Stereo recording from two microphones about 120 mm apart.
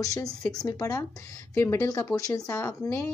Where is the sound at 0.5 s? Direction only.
30° left (ahead or behind).